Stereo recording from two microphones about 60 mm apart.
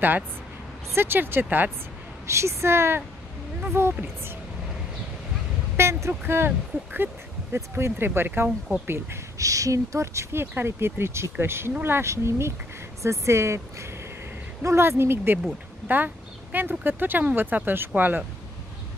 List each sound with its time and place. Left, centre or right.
0.9 s speech: right
2.2 s speech: right
5.8 s speech: right
9.4 s speech: right
10.4 s speech: right
12.1 s speech: right
16.5 s speech: right